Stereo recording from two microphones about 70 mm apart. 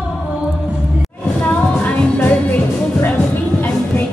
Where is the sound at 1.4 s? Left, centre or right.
Left.